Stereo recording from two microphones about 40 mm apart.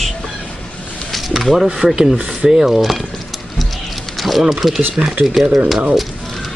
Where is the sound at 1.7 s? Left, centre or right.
Right.